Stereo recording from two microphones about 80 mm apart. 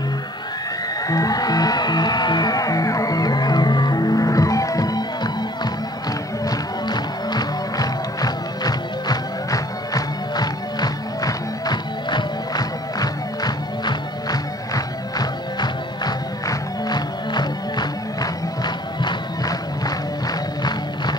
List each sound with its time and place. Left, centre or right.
1.0 s music: left
6.4 s music: left